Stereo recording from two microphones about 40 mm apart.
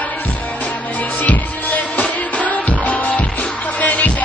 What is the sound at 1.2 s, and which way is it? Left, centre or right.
Music, left.